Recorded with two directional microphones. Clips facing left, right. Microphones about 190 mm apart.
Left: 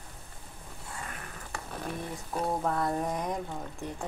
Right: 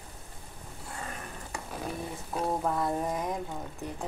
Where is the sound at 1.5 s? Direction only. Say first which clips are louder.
Even; 5° right (ahead or behind).